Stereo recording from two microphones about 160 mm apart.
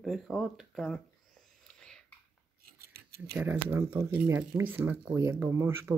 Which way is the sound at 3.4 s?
15° right (ahead or behind).